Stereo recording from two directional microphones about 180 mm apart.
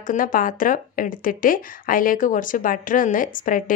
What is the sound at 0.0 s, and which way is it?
A woman's voice, 50° left (ahead or behind).